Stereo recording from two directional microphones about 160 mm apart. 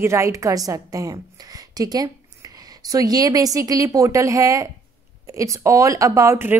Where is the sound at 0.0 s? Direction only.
15° right (ahead or behind).